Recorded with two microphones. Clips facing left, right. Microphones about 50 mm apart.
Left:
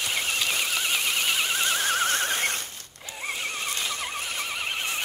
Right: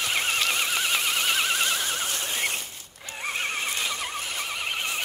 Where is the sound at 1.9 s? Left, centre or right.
Left.